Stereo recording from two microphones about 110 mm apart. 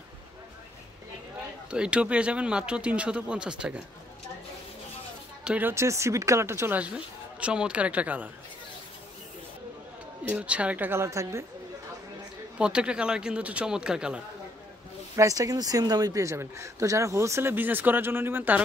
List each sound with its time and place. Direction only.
1.7 s speech: 10° right (ahead or behind)
5.4 s speech: 15° right (ahead or behind)
6.8 s speech: 10° right (ahead or behind)
10.2 s speech: 10° right (ahead or behind)
12.5 s speech: 10° right (ahead or behind)
15.1 s speech: 30° right (ahead or behind)